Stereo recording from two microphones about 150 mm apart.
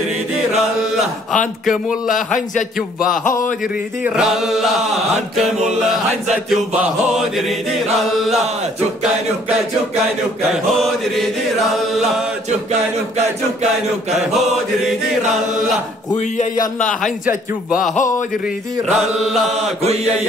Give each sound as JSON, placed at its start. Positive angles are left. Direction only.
{"t": 2.0, "sound": "a man's voice", "side_deg": 60}
{"t": 4.0, "sound": "chant", "side_deg": -5}
{"t": 10.8, "sound": "chant", "side_deg": 0}